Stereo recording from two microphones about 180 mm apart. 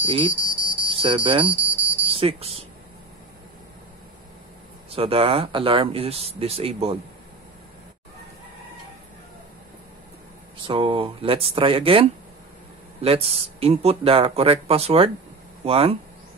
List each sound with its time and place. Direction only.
0.0 s speech: 30° right (ahead or behind)
0.3 s hum: 45° left (ahead or behind)
0.9 s speech: 30° right (ahead or behind)
1.5 s smoke detector: 10° right (ahead or behind)
2.0 s speech: 30° right (ahead or behind)
4.9 s speech: 30° right (ahead or behind)
10.6 s speech: 30° right (ahead or behind)